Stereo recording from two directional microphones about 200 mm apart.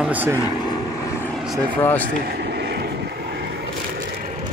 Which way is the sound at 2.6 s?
55° right (ahead or behind).